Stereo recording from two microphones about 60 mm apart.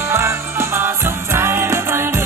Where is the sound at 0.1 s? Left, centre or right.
Right.